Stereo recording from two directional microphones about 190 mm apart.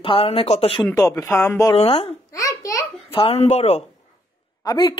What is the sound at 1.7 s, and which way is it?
Speech, 30° left (ahead or behind).